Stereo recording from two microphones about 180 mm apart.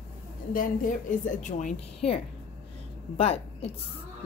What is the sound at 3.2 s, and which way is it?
Speech, 35° left (ahead or behind).